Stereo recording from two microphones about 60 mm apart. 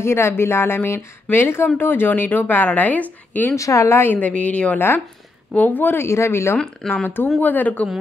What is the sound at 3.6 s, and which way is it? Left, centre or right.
Speech, left.